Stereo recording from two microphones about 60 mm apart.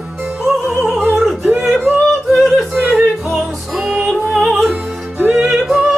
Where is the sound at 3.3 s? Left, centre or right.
Centre.